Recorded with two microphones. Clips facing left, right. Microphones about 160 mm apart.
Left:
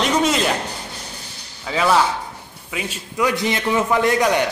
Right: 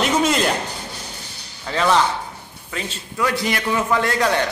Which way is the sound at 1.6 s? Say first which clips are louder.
Left 1 dB; 5° left (ahead or behind).